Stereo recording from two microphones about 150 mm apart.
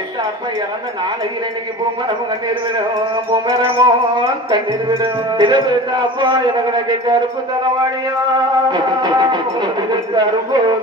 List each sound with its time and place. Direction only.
3.4 s a man's voice: 35° right (ahead or behind)
8.6 s speech: 30° right (ahead or behind)